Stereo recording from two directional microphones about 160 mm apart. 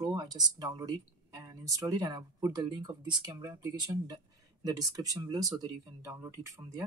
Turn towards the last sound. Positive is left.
turn(degrees=-20)  # may be behind; listen again after turning